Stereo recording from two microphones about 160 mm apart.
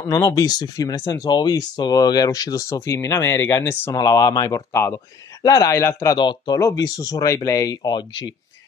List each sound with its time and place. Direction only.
0.0 s speech: 20° left (ahead or behind)
6.1 s speech: 25° left (ahead or behind)